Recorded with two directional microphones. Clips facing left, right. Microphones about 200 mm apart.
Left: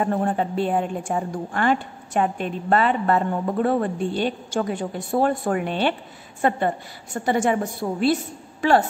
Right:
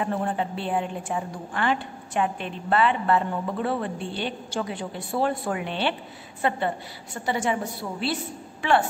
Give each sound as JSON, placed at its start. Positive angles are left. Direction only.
{"t": 0.0, "sound": "a woman's voice", "side_deg": 45}